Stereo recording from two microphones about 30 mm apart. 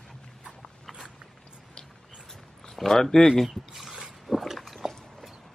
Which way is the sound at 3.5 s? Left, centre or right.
Centre.